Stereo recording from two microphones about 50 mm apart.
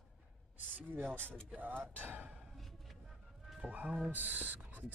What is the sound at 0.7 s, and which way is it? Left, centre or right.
Speech, right.